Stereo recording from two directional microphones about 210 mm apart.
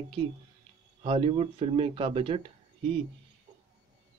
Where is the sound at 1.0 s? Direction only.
25° right (ahead or behind).